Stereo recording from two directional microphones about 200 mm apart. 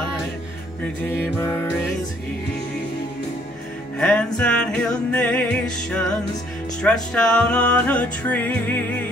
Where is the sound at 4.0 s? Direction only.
5° left (ahead or behind).